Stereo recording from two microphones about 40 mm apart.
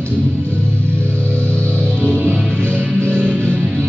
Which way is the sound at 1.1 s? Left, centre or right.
Left.